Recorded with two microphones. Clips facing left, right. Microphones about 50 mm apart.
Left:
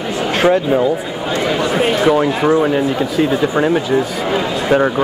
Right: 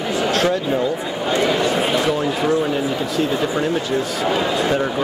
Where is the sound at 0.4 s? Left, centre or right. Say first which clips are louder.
Left 10 dB; centre.